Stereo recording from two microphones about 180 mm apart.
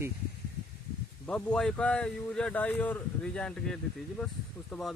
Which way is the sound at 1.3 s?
5° left (ahead or behind).